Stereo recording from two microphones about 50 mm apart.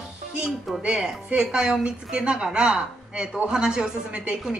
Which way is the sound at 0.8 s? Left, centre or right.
Centre.